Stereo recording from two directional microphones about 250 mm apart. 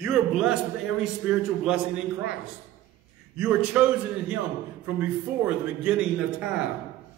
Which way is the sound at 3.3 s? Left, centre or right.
Centre.